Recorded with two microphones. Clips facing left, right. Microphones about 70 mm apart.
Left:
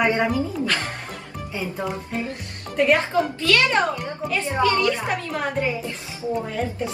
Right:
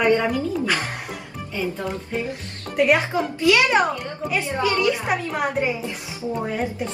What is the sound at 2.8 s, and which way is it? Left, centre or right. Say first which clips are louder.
A woman's voice: even; centre.